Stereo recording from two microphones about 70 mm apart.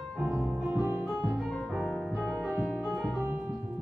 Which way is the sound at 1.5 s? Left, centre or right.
Centre.